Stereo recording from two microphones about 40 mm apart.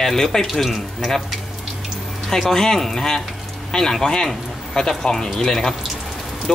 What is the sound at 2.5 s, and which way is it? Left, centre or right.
Speech, centre.